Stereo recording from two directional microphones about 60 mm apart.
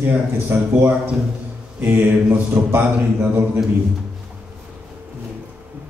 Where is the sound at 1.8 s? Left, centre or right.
Right.